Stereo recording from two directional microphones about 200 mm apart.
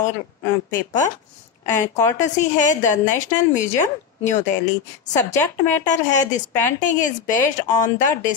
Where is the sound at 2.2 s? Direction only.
40° left (ahead or behind).